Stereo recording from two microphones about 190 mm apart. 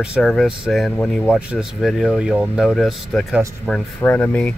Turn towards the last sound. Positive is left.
turn(degrees=5)  # may be behind; listen again after turning